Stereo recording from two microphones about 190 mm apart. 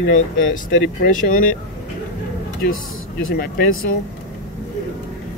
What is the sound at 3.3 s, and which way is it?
Speech, 50° left (ahead or behind).